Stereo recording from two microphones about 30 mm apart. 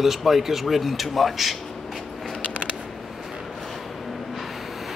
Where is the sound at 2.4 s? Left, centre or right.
Left.